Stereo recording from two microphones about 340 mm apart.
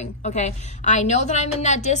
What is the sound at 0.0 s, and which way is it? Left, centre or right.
A woman's voice, centre.